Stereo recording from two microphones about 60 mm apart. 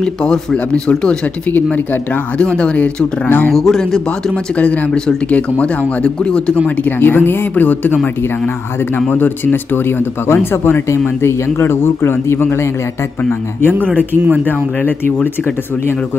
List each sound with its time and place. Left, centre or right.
0.0 s speech: centre
2.3 s speech: centre
3.3 s speech: left
3.5 s speech: centre
4.6 s speech: centre
6.8 s speech: left
9.1 s speech: left